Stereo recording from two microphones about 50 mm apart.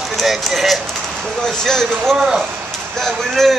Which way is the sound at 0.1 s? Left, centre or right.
Centre.